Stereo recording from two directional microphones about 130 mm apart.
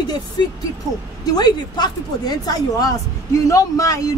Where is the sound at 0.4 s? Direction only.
35° left (ahead or behind).